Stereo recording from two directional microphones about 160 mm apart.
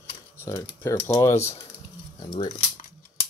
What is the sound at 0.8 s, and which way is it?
Speech, 15° left (ahead or behind).